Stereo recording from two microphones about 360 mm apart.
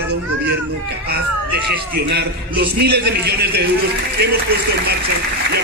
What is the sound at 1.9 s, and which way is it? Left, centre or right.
A man's voice, right.